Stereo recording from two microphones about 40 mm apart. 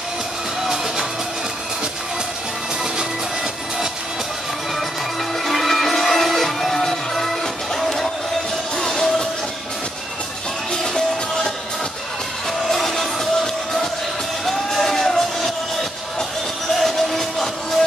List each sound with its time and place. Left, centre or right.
5.4 s music: centre
10.7 s music: centre
12.6 s music: centre
16.8 s music: centre